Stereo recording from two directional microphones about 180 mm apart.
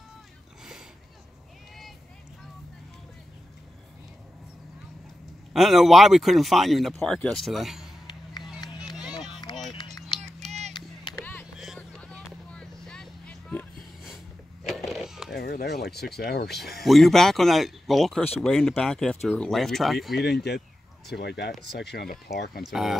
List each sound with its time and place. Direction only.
5.5 s speech: centre (ahead or behind)
8.5 s run: 25° left (ahead or behind)
11.1 s a sound: 10° left (ahead or behind)
11.6 s vehicle: centre (ahead or behind)
14.1 s a sound: centre (ahead or behind)
15.3 s a sound: 60° left (ahead or behind)
15.9 s speech: 65° left (ahead or behind)
16.8 s speech: centre (ahead or behind)
20.2 s speech: 65° left (ahead or behind)
22.6 s speech: centre (ahead or behind)